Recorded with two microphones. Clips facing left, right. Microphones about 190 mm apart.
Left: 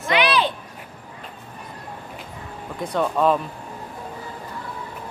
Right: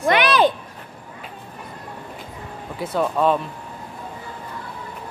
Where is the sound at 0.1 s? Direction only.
45° right (ahead or behind).